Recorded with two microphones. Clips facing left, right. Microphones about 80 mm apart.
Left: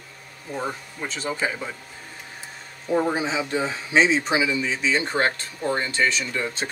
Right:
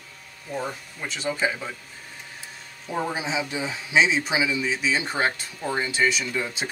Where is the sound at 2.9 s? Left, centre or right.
Left.